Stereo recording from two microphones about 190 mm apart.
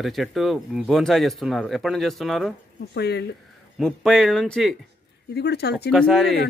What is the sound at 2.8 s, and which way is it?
Speech, 60° left (ahead or behind).